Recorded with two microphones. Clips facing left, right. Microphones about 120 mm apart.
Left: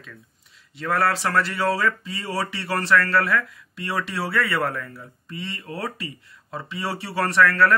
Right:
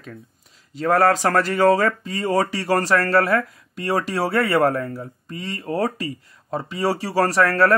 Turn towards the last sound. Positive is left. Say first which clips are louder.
# right 2 dB
turn(degrees=-35)  # may be behind; listen again after turning